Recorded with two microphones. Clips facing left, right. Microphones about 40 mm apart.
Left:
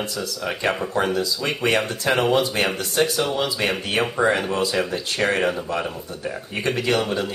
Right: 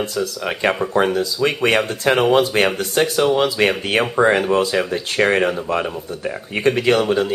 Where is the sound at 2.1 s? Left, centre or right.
Right.